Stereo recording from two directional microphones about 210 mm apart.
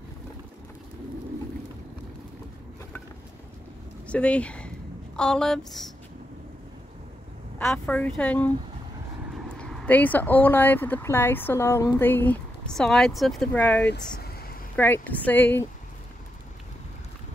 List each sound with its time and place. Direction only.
4.1 s a woman's voice: 5° left (ahead or behind)
7.5 s speech: 5° left (ahead or behind)
9.6 s speech: 5° left (ahead or behind)
13.8 s a sound: 50° left (ahead or behind)
14.8 s speech: 10° left (ahead or behind)